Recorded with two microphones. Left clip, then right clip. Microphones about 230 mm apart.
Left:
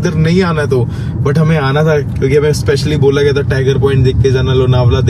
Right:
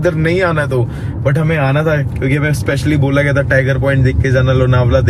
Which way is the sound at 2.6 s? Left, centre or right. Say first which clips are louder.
Left 4 dB; centre.